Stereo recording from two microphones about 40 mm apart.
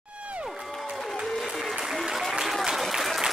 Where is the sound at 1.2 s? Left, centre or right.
Centre.